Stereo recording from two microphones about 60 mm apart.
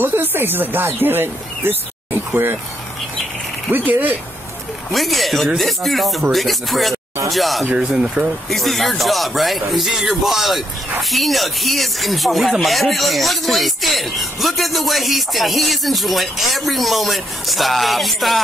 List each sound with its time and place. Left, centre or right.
0.0 s speech: right
3.7 s speech: right
4.9 s speech: centre
7.7 s speech: centre
8.5 s speech: centre